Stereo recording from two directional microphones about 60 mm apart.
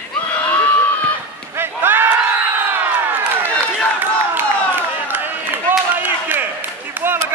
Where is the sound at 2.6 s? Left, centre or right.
Right.